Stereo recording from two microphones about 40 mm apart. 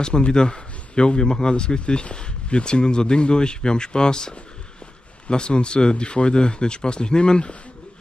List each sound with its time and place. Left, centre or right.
0.0 s speech: left